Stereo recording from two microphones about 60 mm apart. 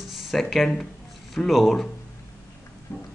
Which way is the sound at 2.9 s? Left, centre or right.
Left.